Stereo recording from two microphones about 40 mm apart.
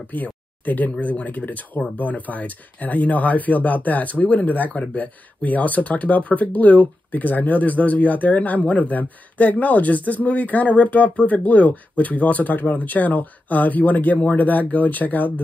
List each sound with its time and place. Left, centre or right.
0.1 s speech: left